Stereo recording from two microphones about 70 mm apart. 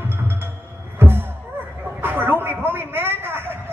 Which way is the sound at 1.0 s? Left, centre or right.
Right.